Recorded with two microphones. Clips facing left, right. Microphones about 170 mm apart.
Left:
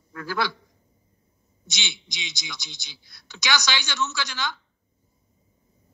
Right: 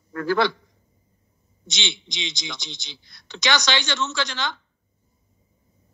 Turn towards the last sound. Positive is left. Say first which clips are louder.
# right 3 dB
turn(degrees=5)  # may be behind; listen again after turning